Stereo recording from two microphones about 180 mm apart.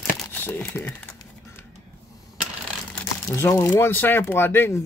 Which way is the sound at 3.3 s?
15° left (ahead or behind).